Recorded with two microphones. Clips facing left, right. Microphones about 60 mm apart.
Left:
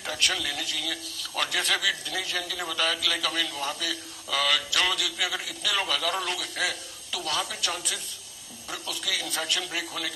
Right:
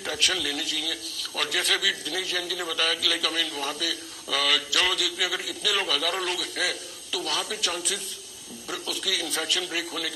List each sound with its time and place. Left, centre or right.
0.1 s a man's voice: centre
8.8 s a man's voice: centre